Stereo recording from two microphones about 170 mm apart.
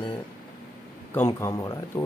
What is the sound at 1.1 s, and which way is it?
Speech, 15° left (ahead or behind).